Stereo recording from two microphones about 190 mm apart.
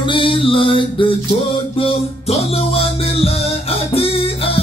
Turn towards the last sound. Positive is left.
turn(degrees=30)  # may be behind; listen again after turning